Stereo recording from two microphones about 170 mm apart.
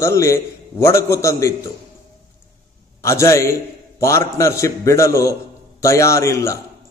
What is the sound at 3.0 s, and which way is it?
A man's voice, 15° left (ahead or behind).